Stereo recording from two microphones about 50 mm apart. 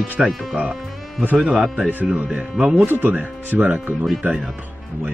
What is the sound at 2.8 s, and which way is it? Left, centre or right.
Speech, right.